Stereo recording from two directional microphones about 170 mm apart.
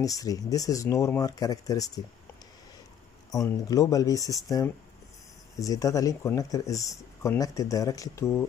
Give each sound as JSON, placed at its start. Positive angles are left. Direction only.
{"t": 0.0, "sound": "speech", "side_deg": 20}
{"t": 3.3, "sound": "speech", "side_deg": 20}